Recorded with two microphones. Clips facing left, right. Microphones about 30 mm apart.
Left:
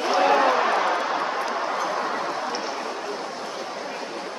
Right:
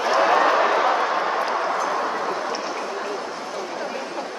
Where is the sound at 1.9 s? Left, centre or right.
Centre.